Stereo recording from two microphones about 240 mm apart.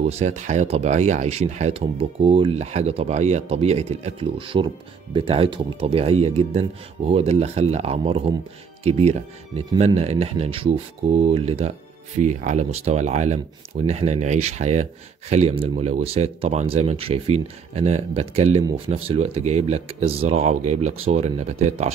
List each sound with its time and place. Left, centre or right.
0.0 s speech: right